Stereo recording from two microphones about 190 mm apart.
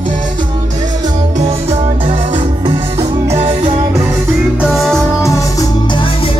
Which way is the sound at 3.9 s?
10° right (ahead or behind).